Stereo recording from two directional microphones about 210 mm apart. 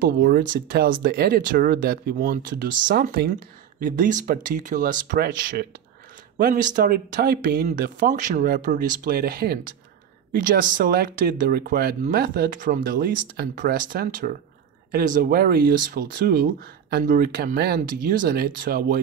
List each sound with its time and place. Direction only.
0.0 s speech: 45° right (ahead or behind)